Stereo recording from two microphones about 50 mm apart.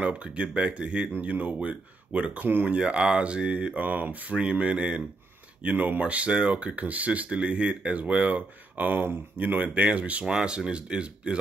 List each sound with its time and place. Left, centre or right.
0.0 s speech: right
1.0 s speech: right
2.4 s speech: right
2.7 s speech: centre
5.6 s speech: right
8.7 s speech: right; by 11.3 s centre